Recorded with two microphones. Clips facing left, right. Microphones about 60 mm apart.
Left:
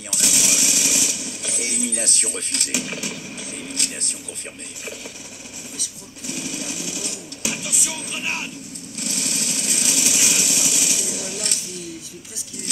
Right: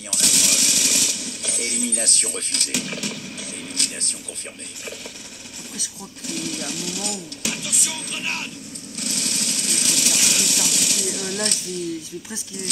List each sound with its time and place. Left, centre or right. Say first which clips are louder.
0.1 s machine gun: even; centre
6.2 s music: right 1 dB; centre
9.0 s a sound: even; centre